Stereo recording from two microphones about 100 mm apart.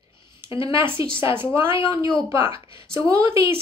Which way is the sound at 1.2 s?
25° right (ahead or behind).